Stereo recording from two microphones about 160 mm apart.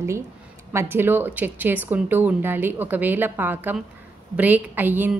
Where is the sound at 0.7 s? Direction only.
15° right (ahead or behind).